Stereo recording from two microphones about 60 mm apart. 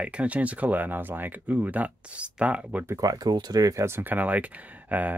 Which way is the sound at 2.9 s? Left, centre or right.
Right.